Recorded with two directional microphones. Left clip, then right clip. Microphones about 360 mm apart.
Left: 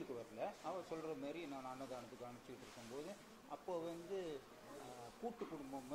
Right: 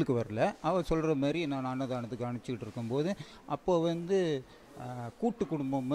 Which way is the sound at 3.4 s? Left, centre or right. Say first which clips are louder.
Right 17 dB; right.